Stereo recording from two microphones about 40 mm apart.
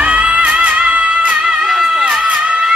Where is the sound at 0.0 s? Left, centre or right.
Right.